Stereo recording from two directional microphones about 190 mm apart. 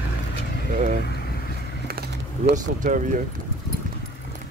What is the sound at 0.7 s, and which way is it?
Vehicle, 40° right (ahead or behind).